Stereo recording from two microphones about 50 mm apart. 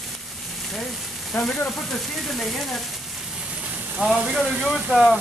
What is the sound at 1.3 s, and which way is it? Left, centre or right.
Speech, left.